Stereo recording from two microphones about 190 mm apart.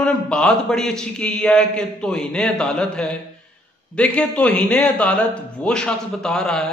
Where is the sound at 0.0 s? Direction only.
5° left (ahead or behind).